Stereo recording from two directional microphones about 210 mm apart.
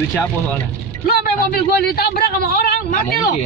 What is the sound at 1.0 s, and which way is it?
Speech, 45° left (ahead or behind).